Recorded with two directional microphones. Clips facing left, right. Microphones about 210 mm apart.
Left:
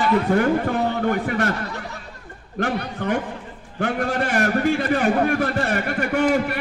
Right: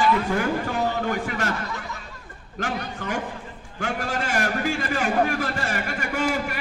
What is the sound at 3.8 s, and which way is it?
A man's voice, 60° left (ahead or behind).